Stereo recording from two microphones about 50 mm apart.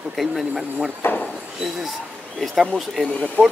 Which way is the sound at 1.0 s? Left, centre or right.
Left.